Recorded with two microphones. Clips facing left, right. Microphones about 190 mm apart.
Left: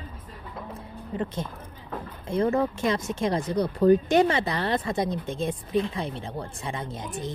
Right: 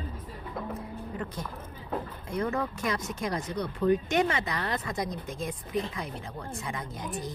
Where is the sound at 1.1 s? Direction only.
25° left (ahead or behind).